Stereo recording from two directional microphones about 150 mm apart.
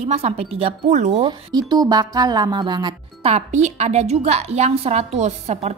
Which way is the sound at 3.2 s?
45° right (ahead or behind).